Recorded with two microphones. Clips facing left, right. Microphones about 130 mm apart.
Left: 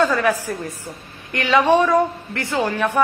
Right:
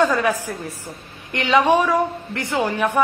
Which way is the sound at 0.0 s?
15° right (ahead or behind).